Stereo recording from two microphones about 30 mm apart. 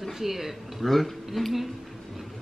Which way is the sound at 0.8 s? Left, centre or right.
Centre.